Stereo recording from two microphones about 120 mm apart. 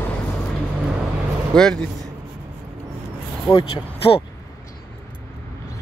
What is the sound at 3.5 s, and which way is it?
Speech, 45° left (ahead or behind).